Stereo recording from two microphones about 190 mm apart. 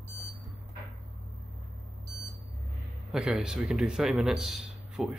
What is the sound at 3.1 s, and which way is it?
Speech, 5° right (ahead or behind).